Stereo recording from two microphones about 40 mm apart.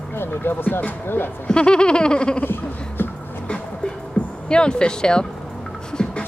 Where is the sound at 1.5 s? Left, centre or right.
Left.